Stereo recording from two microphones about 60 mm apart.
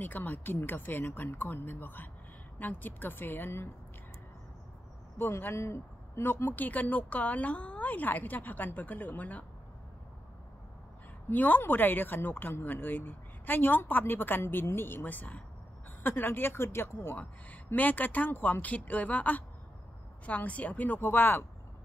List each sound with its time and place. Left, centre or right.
0.0 s speech: left
5.1 s speech: left
6.4 s a woman's voice: left
11.2 s speech: left
16.0 s speech: left
17.6 s a woman's voice: left